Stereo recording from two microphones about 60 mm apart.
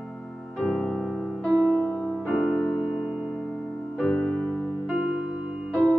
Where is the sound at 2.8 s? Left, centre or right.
Centre.